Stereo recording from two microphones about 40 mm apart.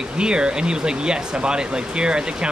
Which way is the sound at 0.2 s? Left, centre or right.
Right.